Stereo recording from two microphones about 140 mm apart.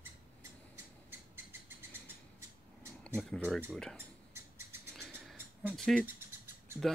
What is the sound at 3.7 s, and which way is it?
Speech, 5° left (ahead or behind).